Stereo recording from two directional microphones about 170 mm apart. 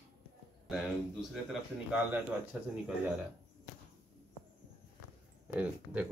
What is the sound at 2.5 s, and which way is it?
Speech, 5° right (ahead or behind).